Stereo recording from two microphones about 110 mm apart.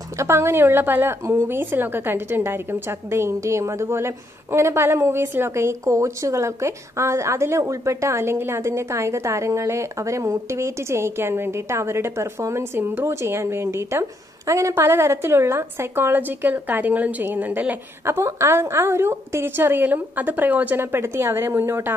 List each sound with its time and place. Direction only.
0.2 s a woman's voice: 25° right (ahead or behind)